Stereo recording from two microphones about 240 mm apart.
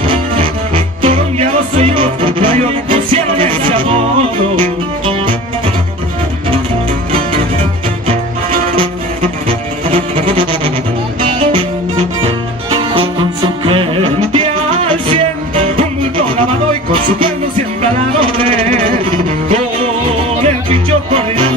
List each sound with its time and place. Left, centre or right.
0.0 s music: right
8.1 s music: right
16.9 s music: right